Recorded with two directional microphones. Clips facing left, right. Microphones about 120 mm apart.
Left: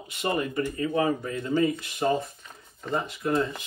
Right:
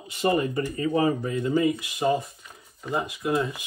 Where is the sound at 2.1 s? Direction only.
5° right (ahead or behind).